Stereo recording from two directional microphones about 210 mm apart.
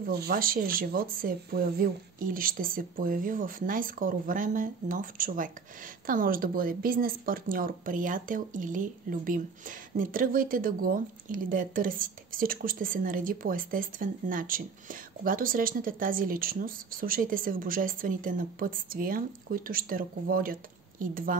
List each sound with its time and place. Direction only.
0.0 s speech: 45° right (ahead or behind)